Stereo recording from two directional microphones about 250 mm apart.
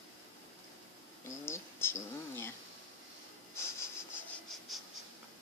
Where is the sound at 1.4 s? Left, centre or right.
Centre.